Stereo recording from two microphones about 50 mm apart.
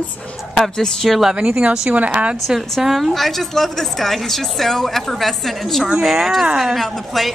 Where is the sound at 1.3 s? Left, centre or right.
Centre.